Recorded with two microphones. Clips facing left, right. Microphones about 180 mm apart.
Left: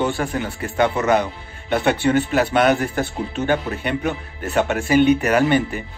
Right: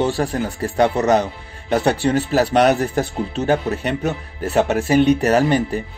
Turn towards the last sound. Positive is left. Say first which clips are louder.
# right 1 dB
turn(degrees=-35)  # may be behind; listen again after turning